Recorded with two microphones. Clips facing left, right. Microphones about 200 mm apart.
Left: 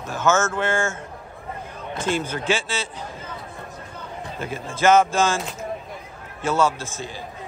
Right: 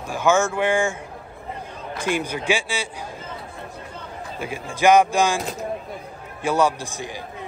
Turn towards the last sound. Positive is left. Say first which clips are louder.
# right 1 dB
turn(degrees=-15)  # may be behind; listen again after turning